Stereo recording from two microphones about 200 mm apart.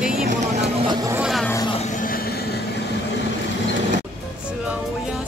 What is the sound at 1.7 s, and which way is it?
Vehicle, 40° left (ahead or behind).